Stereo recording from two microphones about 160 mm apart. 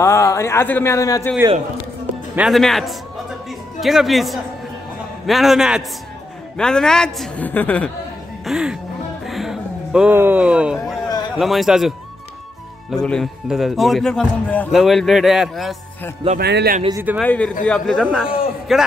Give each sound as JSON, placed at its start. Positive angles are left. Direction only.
{"t": 0.0, "sound": "speech", "side_deg": 20}
{"t": 2.3, "sound": "speech", "side_deg": 0}
{"t": 8.5, "sound": "speech", "side_deg": -5}
{"t": 9.2, "sound": "a sound", "side_deg": 0}
{"t": 11.3, "sound": "speech", "side_deg": 0}
{"t": 12.9, "sound": "speech", "side_deg": 5}
{"t": 16.3, "sound": "a man's voice", "side_deg": -80}
{"t": 17.2, "sound": "speech", "side_deg": 5}